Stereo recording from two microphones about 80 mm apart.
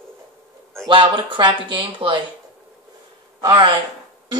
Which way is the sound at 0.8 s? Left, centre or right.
Right.